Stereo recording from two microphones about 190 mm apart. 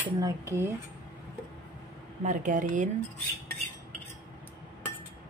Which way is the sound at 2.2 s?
45° right (ahead or behind).